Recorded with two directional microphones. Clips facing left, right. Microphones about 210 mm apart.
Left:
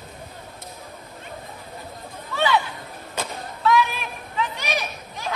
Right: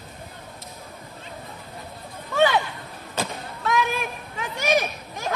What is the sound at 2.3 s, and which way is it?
Chatter, 45° right (ahead or behind).